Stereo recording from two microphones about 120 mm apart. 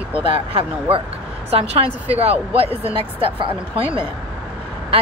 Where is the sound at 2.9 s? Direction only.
50° right (ahead or behind).